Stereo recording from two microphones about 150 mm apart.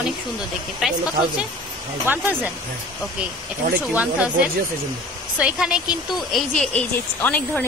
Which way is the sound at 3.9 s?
10° right (ahead or behind).